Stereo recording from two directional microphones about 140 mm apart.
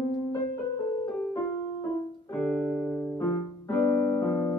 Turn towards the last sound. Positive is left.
turn(degrees=15)  # may be behind; listen again after turning